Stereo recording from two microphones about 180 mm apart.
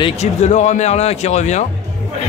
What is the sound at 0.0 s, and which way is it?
Speech, 40° left (ahead or behind).